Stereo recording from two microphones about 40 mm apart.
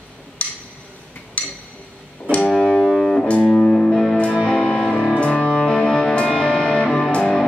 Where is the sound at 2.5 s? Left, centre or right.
Centre.